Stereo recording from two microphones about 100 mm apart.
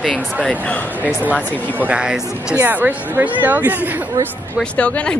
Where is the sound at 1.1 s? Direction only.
10° right (ahead or behind).